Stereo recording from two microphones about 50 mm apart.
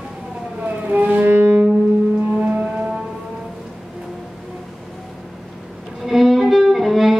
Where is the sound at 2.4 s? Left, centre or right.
Right.